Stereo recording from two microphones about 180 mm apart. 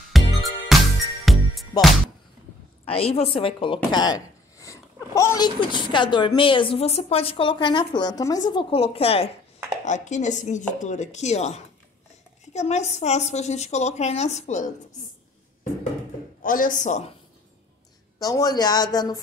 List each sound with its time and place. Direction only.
0.1 s music: centre (ahead or behind)
2.8 s a woman's voice: 35° left (ahead or behind)
16.4 s speech: 50° left (ahead or behind)
18.2 s speech: 20° left (ahead or behind)